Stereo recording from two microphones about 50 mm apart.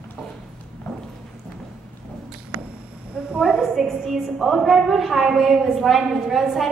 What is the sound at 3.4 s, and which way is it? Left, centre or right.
A woman's voice, centre.